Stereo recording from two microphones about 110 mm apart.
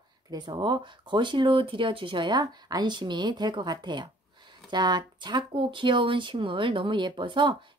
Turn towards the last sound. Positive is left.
turn(degrees=-45)  # may be behind; listen again after turning